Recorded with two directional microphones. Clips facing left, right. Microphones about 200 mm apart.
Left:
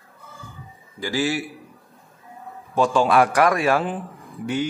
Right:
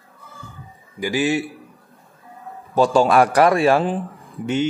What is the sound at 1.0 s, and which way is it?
Speech, 20° right (ahead or behind).